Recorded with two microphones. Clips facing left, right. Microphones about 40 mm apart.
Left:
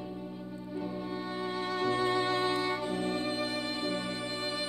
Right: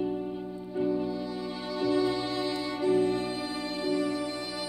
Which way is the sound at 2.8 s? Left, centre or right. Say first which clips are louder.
Right 9 dB; right.